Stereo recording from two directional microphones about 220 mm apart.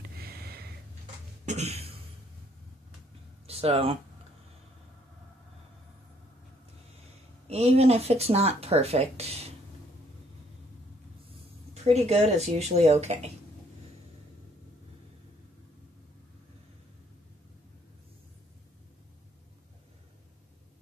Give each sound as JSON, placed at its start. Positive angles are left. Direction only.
{"t": 0.1, "sound": "a sound", "side_deg": -45}
{"t": 1.4, "sound": "cough", "side_deg": -30}
{"t": 3.4, "sound": "speech", "side_deg": -25}
{"t": 7.4, "sound": "speech", "side_deg": -30}
{"t": 11.7, "sound": "speech", "side_deg": -30}